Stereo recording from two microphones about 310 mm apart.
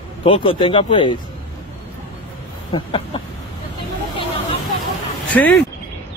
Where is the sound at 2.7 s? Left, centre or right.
Centre.